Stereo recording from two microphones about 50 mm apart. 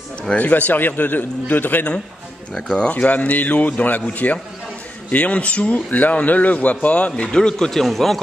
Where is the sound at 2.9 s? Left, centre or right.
Left.